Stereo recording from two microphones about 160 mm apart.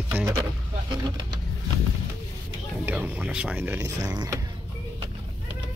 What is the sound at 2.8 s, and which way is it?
Speech, 10° right (ahead or behind).